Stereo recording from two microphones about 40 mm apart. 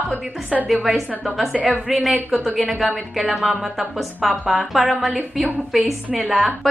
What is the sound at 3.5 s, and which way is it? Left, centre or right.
Speech, centre.